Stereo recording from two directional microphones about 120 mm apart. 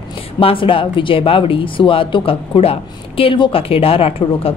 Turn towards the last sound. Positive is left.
turn(degrees=50)  # may be behind; listen again after turning